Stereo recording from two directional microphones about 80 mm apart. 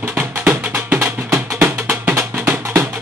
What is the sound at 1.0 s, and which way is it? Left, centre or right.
Music, right.